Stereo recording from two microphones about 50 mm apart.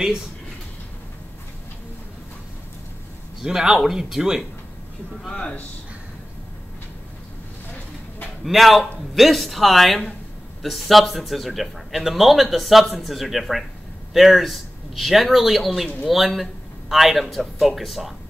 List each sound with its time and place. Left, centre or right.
3.4 s speech: centre
5.3 s speech: centre
8.5 s a man's voice: centre